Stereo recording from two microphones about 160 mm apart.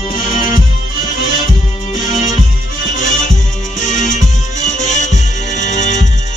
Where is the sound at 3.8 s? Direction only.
50° left (ahead or behind).